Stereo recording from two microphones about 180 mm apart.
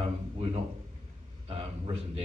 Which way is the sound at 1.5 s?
35° right (ahead or behind).